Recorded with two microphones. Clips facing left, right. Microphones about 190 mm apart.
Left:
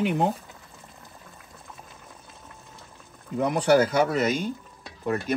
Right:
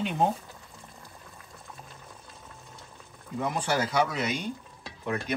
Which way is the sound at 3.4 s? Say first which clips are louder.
Left 8 dB; 60° left (ahead or behind).